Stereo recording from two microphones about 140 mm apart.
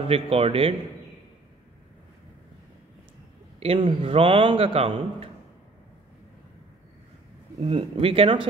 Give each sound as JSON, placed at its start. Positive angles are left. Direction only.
{"t": 0.0, "sound": "a man's voice", "side_deg": -45}
{"t": 3.5, "sound": "a man's voice", "side_deg": -40}
{"t": 7.6, "sound": "a man's voice", "side_deg": -45}